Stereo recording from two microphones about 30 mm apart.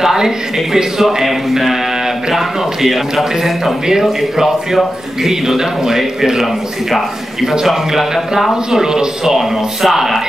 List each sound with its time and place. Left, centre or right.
0.0 s a man's voice: centre
5.3 s a man's voice: centre
8.7 s speech: right
9.2 s a man's voice: centre